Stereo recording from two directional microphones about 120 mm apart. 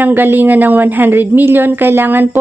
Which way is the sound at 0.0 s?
15° right (ahead or behind).